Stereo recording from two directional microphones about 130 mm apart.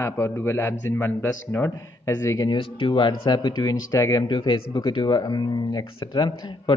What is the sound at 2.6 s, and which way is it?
Speech, 40° left (ahead or behind).